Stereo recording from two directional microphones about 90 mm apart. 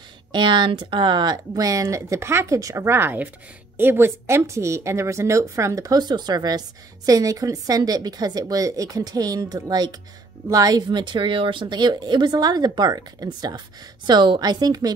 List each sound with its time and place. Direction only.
0.3 s speech: 60° right (ahead or behind)
14.0 s speech: 55° right (ahead or behind)